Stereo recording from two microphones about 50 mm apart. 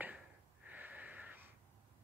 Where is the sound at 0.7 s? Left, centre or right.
Right.